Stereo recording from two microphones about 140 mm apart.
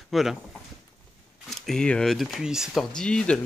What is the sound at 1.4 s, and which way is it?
Speech, 5° left (ahead or behind).